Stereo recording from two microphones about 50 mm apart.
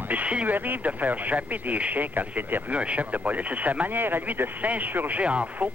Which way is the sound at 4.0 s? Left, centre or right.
Right.